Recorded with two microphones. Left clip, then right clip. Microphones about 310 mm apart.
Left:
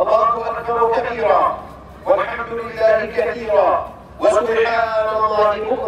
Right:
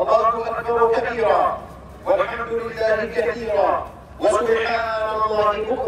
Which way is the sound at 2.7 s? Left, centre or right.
Left.